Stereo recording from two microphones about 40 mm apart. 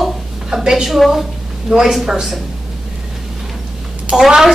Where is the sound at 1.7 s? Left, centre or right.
Right.